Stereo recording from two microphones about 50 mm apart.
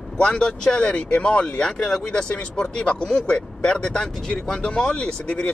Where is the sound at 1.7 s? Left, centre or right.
Centre.